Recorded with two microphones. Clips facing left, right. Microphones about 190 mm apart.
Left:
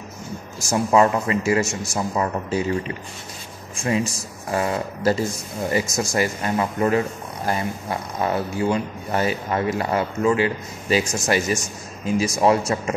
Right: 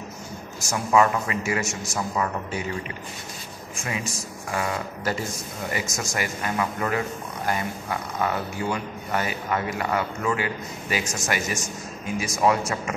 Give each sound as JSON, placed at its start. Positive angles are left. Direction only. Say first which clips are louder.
{"t": 0.7, "sound": "a man's voice", "louder": "left 3 dB", "side_deg": 30}
{"t": 4.5, "sound": "a man's voice", "louder": "left 5 dB", "side_deg": 35}